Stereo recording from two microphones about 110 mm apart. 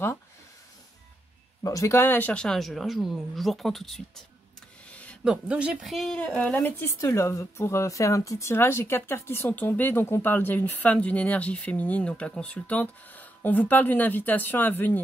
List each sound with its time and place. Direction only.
1.6 s speech: 30° left (ahead or behind); by 4.0 s centre (ahead or behind)
4.8 s a sound: 10° left (ahead or behind)
5.2 s speech: 10° right (ahead or behind)
5.9 s a woman's voice: 5° left (ahead or behind)